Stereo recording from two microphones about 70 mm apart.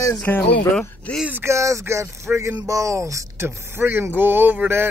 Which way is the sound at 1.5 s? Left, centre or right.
Right.